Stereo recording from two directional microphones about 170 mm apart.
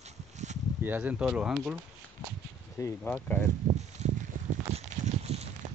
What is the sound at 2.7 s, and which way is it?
Speech, 15° left (ahead or behind).